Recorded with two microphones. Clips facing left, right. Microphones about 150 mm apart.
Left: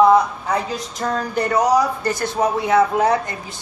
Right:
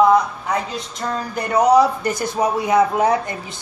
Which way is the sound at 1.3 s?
20° right (ahead or behind).